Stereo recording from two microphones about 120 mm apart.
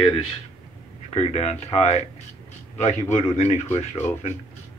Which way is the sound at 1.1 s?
65° left (ahead or behind).